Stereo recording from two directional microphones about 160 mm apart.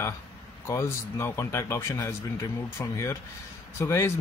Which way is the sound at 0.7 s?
15° left (ahead or behind).